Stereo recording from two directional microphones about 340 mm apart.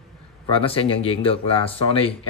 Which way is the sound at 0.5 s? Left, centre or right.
Centre.